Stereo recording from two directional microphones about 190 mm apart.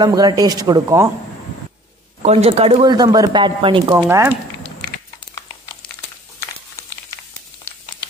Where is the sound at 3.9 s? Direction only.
15° right (ahead or behind).